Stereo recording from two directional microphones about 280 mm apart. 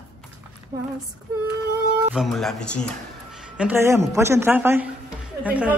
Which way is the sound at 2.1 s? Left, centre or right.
Centre.